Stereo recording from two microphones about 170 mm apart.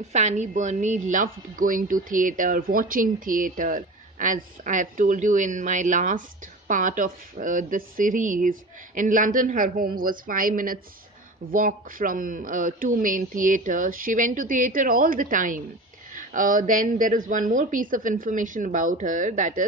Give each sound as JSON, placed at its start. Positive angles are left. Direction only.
{"t": 0.0, "sound": "a woman's voice", "side_deg": -40}